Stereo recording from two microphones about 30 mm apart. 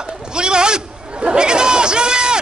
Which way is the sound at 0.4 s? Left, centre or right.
Right.